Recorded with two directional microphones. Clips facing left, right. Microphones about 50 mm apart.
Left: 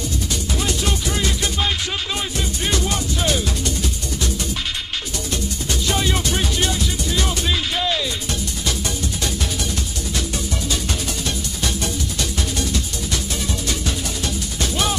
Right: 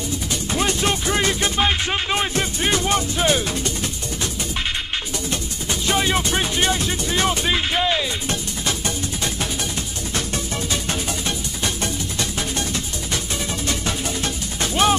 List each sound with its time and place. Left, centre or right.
0.6 s music: right
5.3 s music: right
11.2 s music: right